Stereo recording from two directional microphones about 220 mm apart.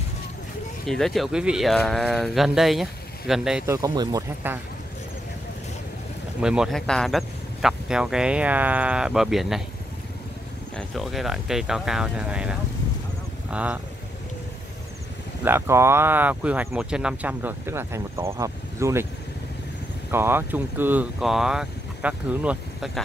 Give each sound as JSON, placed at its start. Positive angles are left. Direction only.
{"t": 0.8, "sound": "speech", "side_deg": 0}
{"t": 3.7, "sound": "speech", "side_deg": -15}
{"t": 6.4, "sound": "speech", "side_deg": -5}
{"t": 10.8, "sound": "speech", "side_deg": 0}
{"t": 15.4, "sound": "speech", "side_deg": -10}
{"t": 20.1, "sound": "speech", "side_deg": -10}